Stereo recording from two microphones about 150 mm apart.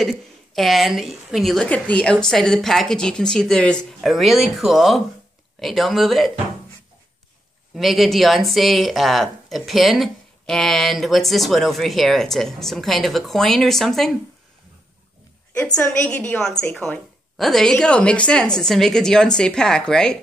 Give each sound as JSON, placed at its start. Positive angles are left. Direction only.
{"t": 0.0, "sound": "speech", "side_deg": 0}
{"t": 7.7, "sound": "speech", "side_deg": 0}
{"t": 15.6, "sound": "a woman's voice", "side_deg": 10}
{"t": 16.8, "sound": "speech", "side_deg": 0}